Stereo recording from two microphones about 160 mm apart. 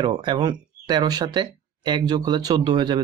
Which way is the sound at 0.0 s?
25° right (ahead or behind).